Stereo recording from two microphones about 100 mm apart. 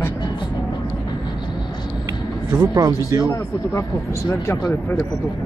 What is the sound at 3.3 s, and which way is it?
Speech, 30° left (ahead or behind).